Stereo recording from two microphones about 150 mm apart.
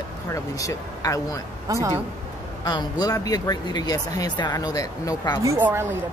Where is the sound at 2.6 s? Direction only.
25° left (ahead or behind).